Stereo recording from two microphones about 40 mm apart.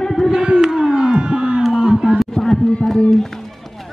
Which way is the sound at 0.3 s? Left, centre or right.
Centre.